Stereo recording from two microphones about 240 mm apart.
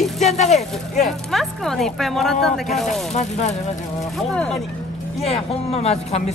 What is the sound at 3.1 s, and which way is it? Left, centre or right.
Speech, left.